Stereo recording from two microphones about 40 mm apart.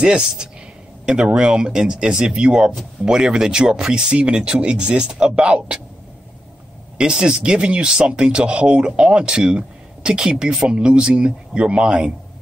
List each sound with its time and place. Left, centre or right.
0.0 s speech: right
7.0 s speech: right